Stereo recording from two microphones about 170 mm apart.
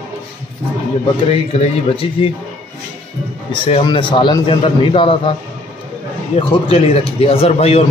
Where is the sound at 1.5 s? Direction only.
30° left (ahead or behind).